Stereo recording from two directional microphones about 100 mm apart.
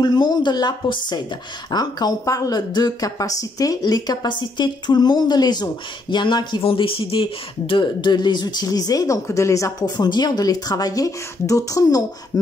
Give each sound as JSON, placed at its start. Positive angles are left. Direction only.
{"t": 0.0, "sound": "speech", "side_deg": 45}
{"t": 9.8, "sound": "a woman's voice", "side_deg": 45}